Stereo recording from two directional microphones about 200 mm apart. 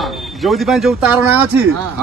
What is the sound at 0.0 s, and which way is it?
Speech, centre (ahead or behind).